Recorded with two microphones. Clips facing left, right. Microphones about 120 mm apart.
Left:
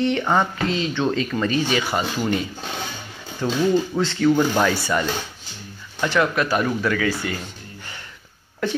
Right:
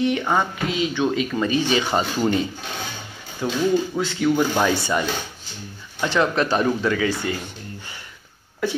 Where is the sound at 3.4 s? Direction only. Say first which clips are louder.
Left 1 dB; 10° right (ahead or behind).